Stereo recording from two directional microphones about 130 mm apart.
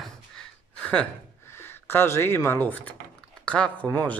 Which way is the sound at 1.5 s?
15° left (ahead or behind).